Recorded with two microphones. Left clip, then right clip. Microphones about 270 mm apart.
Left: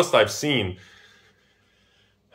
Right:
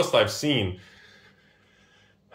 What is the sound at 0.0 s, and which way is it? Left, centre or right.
Speech, centre.